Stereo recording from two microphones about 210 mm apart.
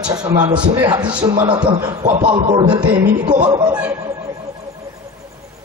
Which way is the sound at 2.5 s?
20° right (ahead or behind).